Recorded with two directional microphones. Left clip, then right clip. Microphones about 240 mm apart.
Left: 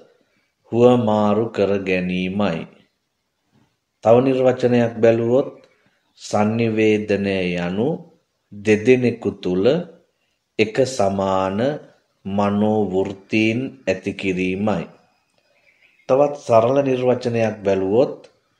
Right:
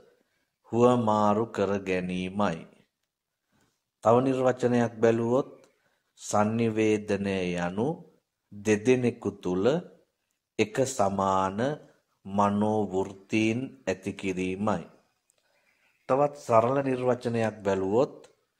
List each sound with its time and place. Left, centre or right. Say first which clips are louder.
0.7 s speech: left 8 dB; centre
4.0 s speech: left 8 dB; right
16.1 s speech: left 8 dB; right